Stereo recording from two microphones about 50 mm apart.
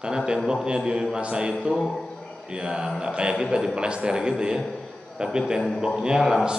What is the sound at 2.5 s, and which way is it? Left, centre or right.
A man's voice, centre.